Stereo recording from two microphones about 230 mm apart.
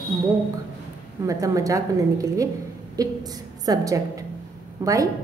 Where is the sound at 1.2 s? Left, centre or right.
Centre.